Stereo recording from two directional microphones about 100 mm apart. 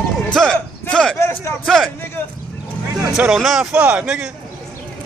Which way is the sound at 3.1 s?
5° right (ahead or behind).